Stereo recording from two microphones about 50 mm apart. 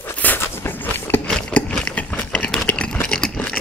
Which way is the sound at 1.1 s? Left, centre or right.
Left.